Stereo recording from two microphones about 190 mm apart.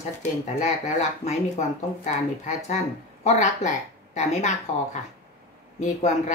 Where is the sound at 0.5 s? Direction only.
40° left (ahead or behind).